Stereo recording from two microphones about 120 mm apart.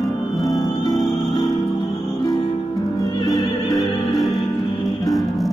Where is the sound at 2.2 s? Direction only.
30° left (ahead or behind).